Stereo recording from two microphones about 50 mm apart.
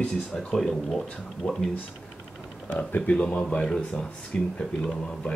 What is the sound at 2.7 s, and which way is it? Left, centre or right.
Speech, left.